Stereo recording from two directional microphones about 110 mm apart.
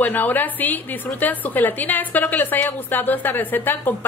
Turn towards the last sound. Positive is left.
turn(degrees=15)  # may be behind; listen again after turning